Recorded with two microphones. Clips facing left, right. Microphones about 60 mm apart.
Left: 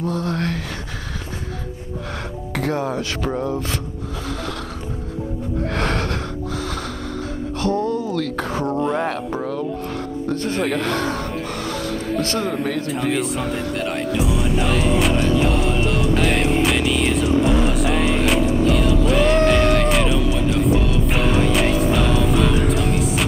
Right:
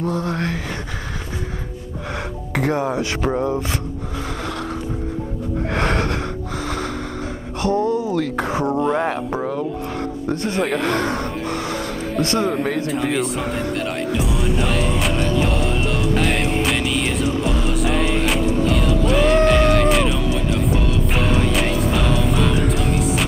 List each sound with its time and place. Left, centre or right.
0.0 s speech: right
2.5 s speech: centre
5.7 s gasp: right
7.6 s music: right
8.8 s speech: centre
10.9 s speech: right
11.4 s music: centre
12.4 s speech: centre
12.9 s music: centre